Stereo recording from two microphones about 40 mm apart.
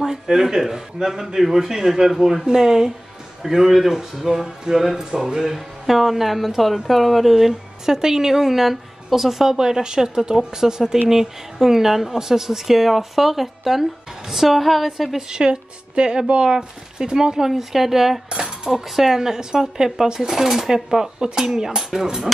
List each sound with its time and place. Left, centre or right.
0.0 s a woman's voice: centre
15.2 s a woman's voice: right